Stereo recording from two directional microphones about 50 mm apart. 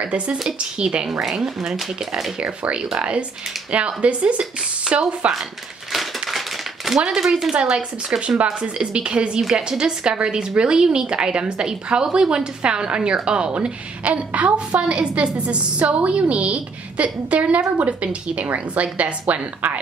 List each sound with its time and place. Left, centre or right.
0.0 s a woman's voice: right; by 2.3 s centre
2.3 s a woman's voice: right
5.3 s a sound: centre
7.1 s a woman's voice: centre; by 19.8 s right